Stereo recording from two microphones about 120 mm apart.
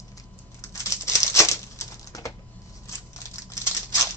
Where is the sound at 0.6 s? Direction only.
25° left (ahead or behind).